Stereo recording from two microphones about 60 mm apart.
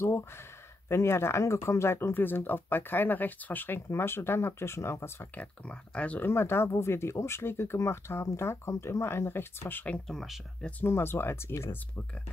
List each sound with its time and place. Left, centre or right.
0.8 s speech: left
5.3 s speech: left
6.2 s speech: left
10.0 s speech: centre
10.9 s speech: left